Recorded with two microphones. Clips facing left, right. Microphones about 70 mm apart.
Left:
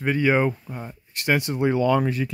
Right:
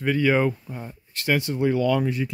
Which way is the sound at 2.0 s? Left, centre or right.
Left.